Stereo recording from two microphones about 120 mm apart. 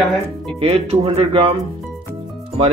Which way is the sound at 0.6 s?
55° right (ahead or behind).